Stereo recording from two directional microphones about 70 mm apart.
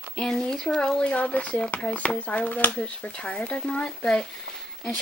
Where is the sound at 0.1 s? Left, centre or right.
Centre.